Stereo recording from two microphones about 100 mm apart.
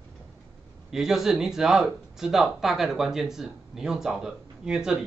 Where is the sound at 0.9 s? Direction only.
5° right (ahead or behind).